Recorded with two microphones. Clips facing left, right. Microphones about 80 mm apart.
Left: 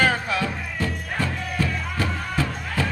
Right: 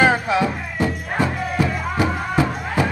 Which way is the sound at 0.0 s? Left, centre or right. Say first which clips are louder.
Right 5 dB; centre.